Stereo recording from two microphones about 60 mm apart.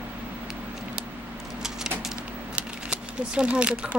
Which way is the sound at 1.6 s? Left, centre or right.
Centre.